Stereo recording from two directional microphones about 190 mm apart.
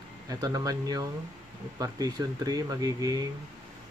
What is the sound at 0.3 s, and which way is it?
Speech, 20° right (ahead or behind).